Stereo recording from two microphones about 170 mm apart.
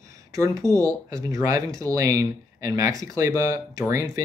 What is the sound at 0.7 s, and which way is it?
Speech, 20° right (ahead or behind).